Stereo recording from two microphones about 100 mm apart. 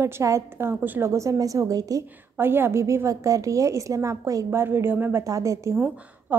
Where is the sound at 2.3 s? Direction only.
20° right (ahead or behind).